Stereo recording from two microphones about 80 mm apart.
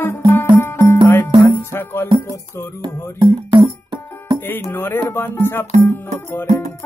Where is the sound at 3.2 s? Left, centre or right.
Right.